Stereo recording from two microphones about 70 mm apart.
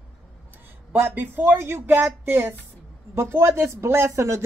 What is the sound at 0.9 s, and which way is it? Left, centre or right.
Speech, right.